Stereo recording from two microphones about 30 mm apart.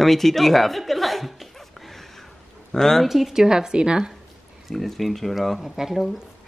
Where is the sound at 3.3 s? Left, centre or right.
Right.